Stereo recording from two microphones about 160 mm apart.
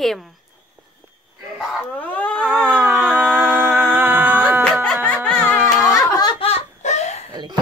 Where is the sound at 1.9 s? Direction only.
10° left (ahead or behind).